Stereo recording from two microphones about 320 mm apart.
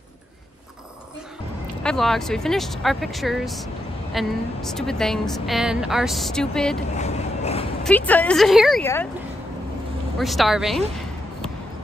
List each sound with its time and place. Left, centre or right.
1.8 s a woman's voice: centre
7.0 s vehicle: centre
7.8 s a woman's voice: centre
10.1 s a woman's voice: centre